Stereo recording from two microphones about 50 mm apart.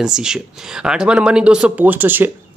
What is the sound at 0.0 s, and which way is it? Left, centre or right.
Speech, centre.